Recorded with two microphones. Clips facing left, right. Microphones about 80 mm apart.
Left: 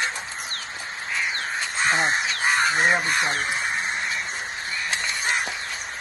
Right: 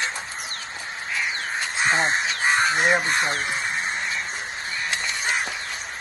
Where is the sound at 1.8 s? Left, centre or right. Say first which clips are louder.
Even; right.